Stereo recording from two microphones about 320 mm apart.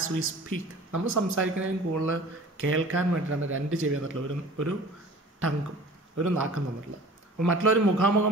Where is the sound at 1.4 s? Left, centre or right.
Right.